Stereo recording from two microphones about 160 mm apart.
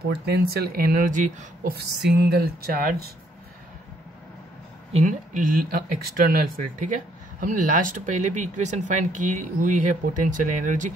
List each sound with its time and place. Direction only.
0.0 s speech: 85° right; by 3.0 s 65° right (ahead or behind)
5.0 s speech: 55° right (ahead or behind)